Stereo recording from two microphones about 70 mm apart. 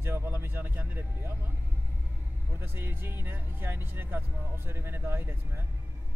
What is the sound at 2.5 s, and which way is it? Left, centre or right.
Speech, right.